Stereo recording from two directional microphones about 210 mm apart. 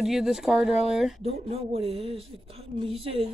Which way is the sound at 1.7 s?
30° right (ahead or behind).